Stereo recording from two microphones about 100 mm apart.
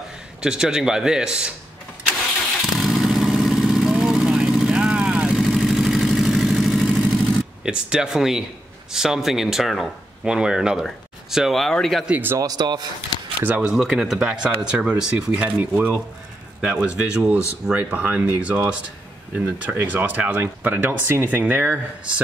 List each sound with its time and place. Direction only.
0.4 s speech: 5° right (ahead or behind)
2.8 s vehicle: 5° right (ahead or behind)
7.6 s speech: 10° right (ahead or behind)
12.1 s speech: 20° right (ahead or behind)
12.4 s speech: 40° right (ahead or behind)
13.4 s speech: 15° right (ahead or behind)
13.7 s speech: 5° right (ahead or behind); by 22.1 s 20° right (ahead or behind)